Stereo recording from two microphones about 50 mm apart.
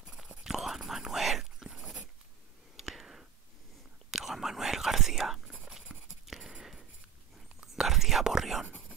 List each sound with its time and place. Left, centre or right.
0.0 s whispering: centre